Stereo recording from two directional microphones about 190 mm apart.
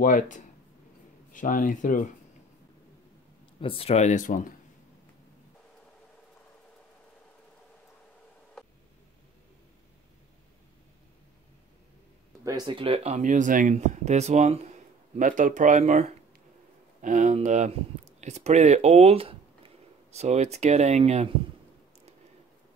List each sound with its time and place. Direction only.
0.0 s speech: 45° left (ahead or behind)
3.6 s speech: 30° left (ahead or behind)
12.4 s speech: 25° right (ahead or behind)